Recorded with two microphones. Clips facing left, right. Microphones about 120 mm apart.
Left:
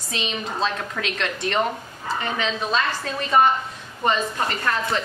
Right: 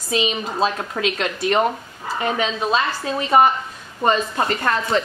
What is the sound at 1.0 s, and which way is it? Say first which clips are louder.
Speech: right 6 dB; 30° right (ahead or behind).